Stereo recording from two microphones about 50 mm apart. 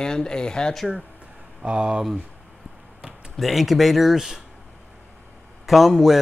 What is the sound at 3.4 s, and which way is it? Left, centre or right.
Speech, centre.